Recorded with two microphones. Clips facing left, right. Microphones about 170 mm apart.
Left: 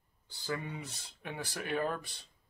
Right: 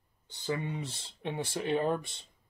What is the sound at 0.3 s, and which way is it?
Speech, 20° right (ahead or behind).